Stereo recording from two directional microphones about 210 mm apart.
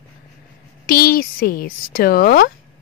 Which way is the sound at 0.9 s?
45° left (ahead or behind).